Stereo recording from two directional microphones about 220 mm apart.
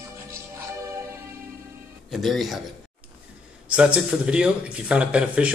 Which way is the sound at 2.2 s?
Centre (ahead or behind).